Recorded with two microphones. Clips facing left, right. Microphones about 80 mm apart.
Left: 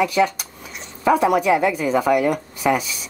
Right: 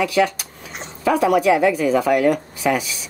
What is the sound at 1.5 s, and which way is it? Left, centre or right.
Speech, centre.